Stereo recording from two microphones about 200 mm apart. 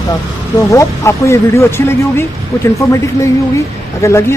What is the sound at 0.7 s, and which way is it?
Speech, 15° left (ahead or behind).